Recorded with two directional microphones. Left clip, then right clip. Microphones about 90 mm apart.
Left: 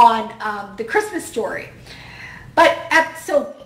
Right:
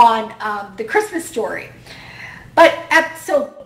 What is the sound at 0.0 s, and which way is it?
A woman's voice, 25° right (ahead or behind).